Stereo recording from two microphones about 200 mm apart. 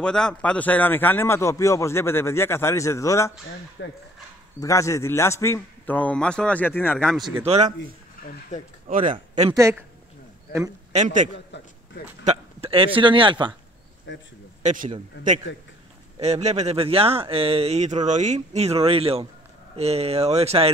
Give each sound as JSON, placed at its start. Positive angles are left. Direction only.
{"t": 0.0, "sound": "a man's voice", "side_deg": 5}
{"t": 3.8, "sound": "speech", "side_deg": 65}
{"t": 4.6, "sound": "a man's voice", "side_deg": 15}
{"t": 7.4, "sound": "speech", "side_deg": -30}
{"t": 8.2, "sound": "speech", "side_deg": 45}
{"t": 8.8, "sound": "a man's voice", "side_deg": -40}
{"t": 9.5, "sound": "speech", "side_deg": -15}
{"t": 10.9, "sound": "a man's voice", "side_deg": -35}
{"t": 11.5, "sound": "speech", "side_deg": 60}
{"t": 12.3, "sound": "speech", "side_deg": -30}
{"t": 14.1, "sound": "speech", "side_deg": 65}
{"t": 14.6, "sound": "a man's voice", "side_deg": -40}
{"t": 16.2, "sound": "speech", "side_deg": -35}